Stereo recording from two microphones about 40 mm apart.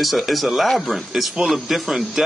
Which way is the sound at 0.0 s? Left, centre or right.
Centre.